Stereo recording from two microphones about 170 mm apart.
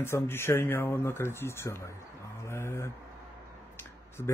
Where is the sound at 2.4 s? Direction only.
15° left (ahead or behind).